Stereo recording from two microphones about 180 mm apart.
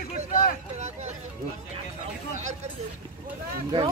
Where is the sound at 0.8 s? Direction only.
40° right (ahead or behind).